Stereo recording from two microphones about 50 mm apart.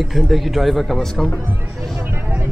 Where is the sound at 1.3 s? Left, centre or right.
Right.